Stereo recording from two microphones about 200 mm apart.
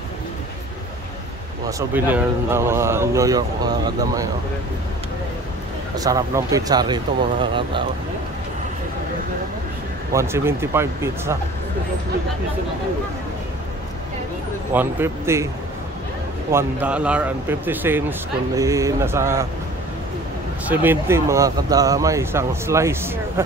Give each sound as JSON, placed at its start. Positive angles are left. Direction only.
{"t": 1.7, "sound": "speech", "side_deg": -10}
{"t": 5.9, "sound": "speech", "side_deg": -15}
{"t": 10.1, "sound": "speech", "side_deg": -10}
{"t": 14.7, "sound": "speech", "side_deg": -10}
{"t": 16.5, "sound": "speech", "side_deg": -5}
{"t": 20.6, "sound": "speech", "side_deg": -10}